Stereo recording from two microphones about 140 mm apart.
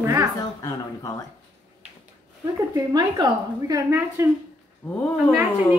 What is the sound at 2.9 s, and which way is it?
A woman's voice, 30° right (ahead or behind).